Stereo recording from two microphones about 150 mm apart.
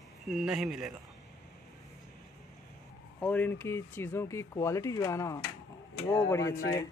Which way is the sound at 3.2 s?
10° left (ahead or behind).